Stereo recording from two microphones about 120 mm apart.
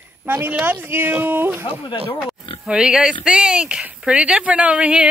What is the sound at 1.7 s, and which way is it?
Speech, 45° left (ahead or behind).